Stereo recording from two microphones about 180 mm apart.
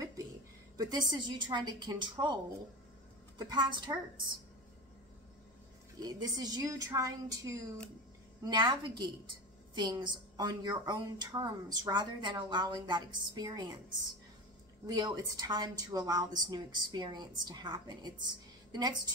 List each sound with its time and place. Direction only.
0.7 s a woman's voice: 25° right (ahead or behind)
3.3 s a woman's voice: 25° right (ahead or behind)
5.9 s a woman's voice: 20° right (ahead or behind)
14.9 s a woman's voice: 20° right (ahead or behind)